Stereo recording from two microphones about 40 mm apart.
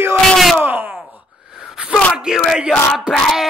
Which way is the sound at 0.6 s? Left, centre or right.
Right.